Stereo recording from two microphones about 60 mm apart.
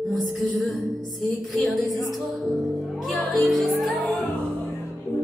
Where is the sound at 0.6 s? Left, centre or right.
Centre.